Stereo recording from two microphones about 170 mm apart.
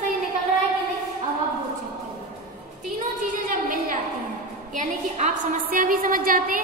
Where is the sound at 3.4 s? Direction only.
50° right (ahead or behind).